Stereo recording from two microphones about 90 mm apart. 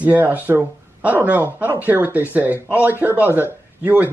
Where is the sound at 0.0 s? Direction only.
15° right (ahead or behind).